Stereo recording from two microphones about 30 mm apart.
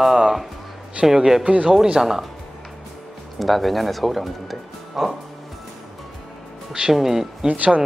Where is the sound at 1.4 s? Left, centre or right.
Right.